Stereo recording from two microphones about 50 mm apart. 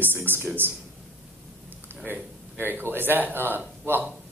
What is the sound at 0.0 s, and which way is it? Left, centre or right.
Speech, right.